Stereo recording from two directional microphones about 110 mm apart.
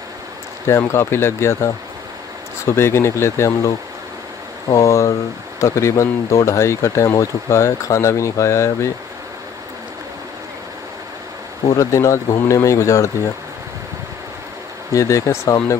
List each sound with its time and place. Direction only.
0.7 s speech: 25° left (ahead or behind)
11.7 s speech: 30° left (ahead or behind)
15.0 s speech: 30° left (ahead or behind)